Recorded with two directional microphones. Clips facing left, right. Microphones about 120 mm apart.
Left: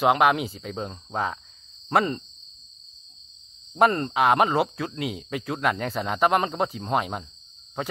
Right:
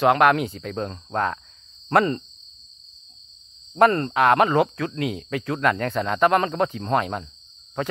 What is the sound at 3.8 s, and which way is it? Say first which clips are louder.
Speech: right 3 dB; 10° left (ahead or behind).